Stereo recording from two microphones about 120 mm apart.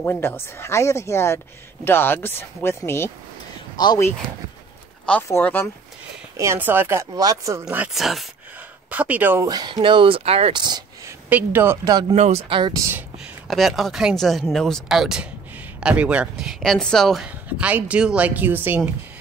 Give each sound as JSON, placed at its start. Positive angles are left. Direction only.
{"t": 0.0, "sound": "speech", "side_deg": 15}
{"t": 3.7, "sound": "speech", "side_deg": 35}
{"t": 5.1, "sound": "speech", "side_deg": 10}
{"t": 6.3, "sound": "speech", "side_deg": -25}
{"t": 7.6, "sound": "speech", "side_deg": -10}
{"t": 8.9, "sound": "speech", "side_deg": -15}
{"t": 9.5, "sound": "speech", "side_deg": -35}
{"t": 9.8, "sound": "speech", "side_deg": -45}
{"t": 10.5, "sound": "speech", "side_deg": -40}
{"t": 11.1, "sound": "speech", "side_deg": -15}
{"t": 11.9, "sound": "speech", "side_deg": -35}
{"t": 12.2, "sound": "speech", "side_deg": -60}
{"t": 13.5, "sound": "speech", "side_deg": 0}
{"t": 17.5, "sound": "speech", "side_deg": -15}